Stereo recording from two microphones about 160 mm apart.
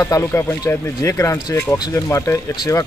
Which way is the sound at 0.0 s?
20° left (ahead or behind).